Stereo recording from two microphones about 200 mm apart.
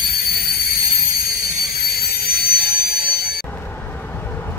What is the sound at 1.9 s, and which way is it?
Jet engine, 50° left (ahead or behind).